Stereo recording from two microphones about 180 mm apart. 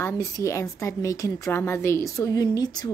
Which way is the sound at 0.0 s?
15° left (ahead or behind).